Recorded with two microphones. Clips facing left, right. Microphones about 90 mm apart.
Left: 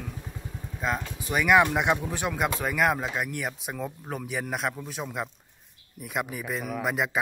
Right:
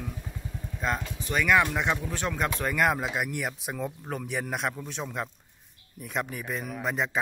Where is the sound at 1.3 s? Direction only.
15° left (ahead or behind).